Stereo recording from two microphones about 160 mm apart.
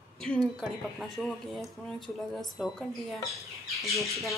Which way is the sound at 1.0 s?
Centre (ahead or behind).